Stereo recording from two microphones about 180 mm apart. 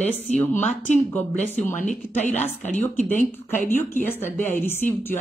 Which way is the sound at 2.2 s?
40° left (ahead or behind).